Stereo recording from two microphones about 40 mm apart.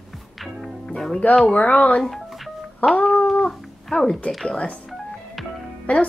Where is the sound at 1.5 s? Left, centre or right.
Left.